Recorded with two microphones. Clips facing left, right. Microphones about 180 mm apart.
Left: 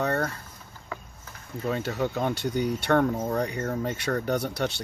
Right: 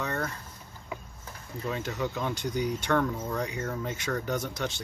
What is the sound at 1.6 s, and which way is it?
Speech, 55° left (ahead or behind).